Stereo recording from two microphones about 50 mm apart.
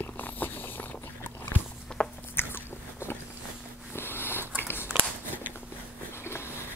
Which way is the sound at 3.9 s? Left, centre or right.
Left.